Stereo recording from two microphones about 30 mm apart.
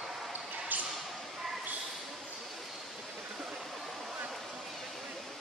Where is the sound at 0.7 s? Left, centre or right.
Right.